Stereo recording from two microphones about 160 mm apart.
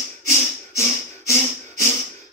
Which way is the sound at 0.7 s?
20° left (ahead or behind).